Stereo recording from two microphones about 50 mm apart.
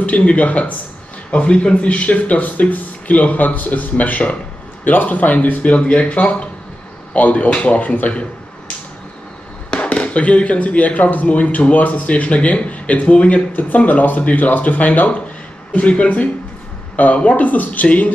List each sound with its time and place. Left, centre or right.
0.0 s speech: left
7.2 s speech: left
9.7 s speech: left
16.9 s speech: left